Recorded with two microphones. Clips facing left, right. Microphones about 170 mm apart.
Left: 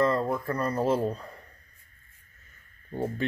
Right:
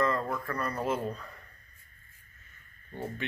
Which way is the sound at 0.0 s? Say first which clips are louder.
Left 4 dB; 30° left (ahead or behind).